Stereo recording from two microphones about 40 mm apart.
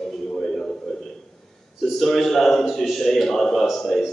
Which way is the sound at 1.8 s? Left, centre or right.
Centre.